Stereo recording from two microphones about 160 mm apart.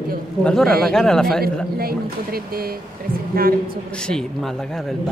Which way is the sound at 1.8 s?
70° right (ahead or behind).